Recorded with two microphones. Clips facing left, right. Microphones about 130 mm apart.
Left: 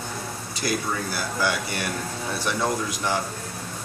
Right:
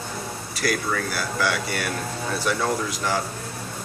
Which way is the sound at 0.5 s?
20° left (ahead or behind).